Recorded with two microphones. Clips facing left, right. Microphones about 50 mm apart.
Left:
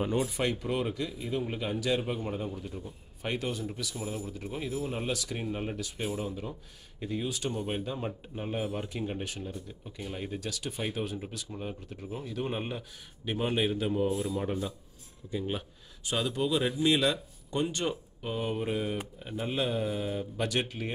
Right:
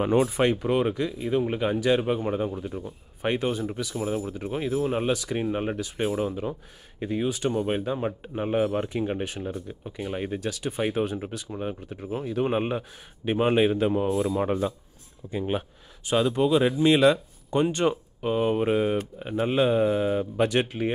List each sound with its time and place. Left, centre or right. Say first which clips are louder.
0.0 s speech: right 8 dB; right
2.5 s speech: right 7 dB; right
7.5 s speech: right 7 dB; right
8.8 s speech: right 7 dB; right
12.0 s speech: right 9 dB; right
20.4 s speech: right 6 dB; right